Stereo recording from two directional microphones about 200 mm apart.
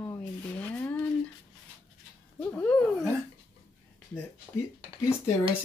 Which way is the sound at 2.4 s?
5° left (ahead or behind).